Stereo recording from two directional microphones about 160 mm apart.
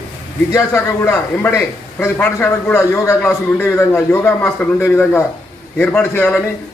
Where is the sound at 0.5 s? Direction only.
15° left (ahead or behind).